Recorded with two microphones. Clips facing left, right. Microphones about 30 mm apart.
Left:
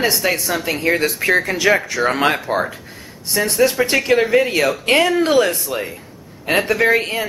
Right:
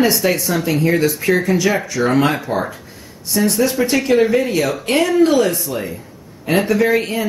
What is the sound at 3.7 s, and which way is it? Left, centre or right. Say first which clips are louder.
Speech: right 1 dB; left.